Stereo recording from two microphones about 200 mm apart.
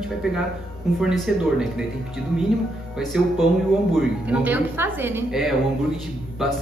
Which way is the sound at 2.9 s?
Centre (ahead or behind).